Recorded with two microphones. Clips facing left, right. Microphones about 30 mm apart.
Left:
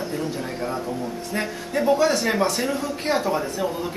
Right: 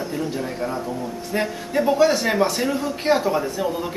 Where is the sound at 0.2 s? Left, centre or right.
Centre.